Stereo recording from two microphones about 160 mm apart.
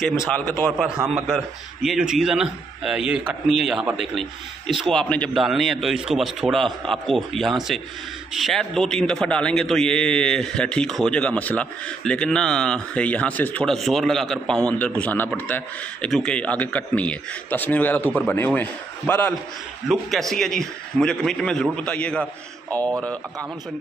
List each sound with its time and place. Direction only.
0.0 s a man's voice: 5° right (ahead or behind)
0.8 s a man's voice: 5° right (ahead or behind); by 19.3 s 10° left (ahead or behind)
19.9 s a man's voice: centre (ahead or behind)
22.7 s speech: 20° right (ahead or behind)